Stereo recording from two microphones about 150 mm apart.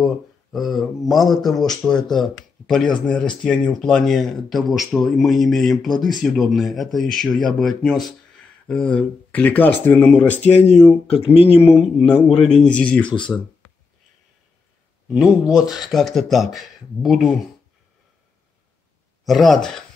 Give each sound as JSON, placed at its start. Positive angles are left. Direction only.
{"t": 0.0, "sound": "speech", "side_deg": 0}
{"t": 10.4, "sound": "speech", "side_deg": 50}
{"t": 11.8, "sound": "speech", "side_deg": 0}
{"t": 15.0, "sound": "speech", "side_deg": -5}
{"t": 19.2, "sound": "speech", "side_deg": 0}